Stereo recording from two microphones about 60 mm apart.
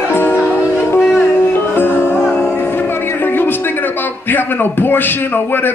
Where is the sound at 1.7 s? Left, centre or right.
Left.